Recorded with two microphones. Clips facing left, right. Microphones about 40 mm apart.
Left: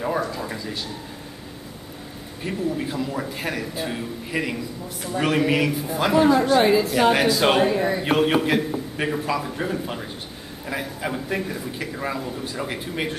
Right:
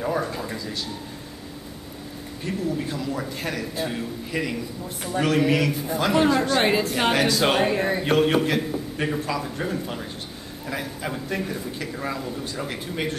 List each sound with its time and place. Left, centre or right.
0.0 s a man's voice: centre
2.4 s a man's voice: centre
7.6 s a man's voice: centre
8.0 s a man's voice: centre